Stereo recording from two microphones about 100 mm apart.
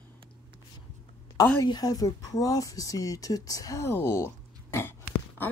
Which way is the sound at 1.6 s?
40° left (ahead or behind).